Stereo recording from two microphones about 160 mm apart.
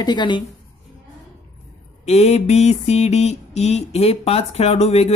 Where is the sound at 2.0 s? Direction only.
40° left (ahead or behind).